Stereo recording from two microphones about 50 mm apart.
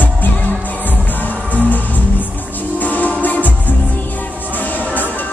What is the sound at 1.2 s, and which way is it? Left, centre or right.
Music, left.